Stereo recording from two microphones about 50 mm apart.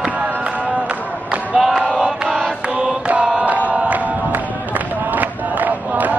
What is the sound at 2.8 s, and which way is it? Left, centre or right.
Chant, right.